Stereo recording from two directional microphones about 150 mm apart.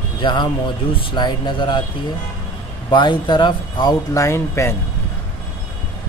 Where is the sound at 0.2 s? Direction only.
30° left (ahead or behind).